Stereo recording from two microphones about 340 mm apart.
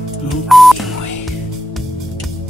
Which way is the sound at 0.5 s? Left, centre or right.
Centre.